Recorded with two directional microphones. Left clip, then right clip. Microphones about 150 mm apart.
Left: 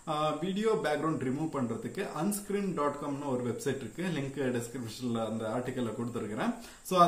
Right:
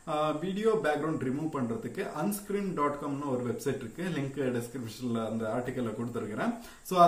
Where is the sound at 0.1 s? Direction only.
10° left (ahead or behind).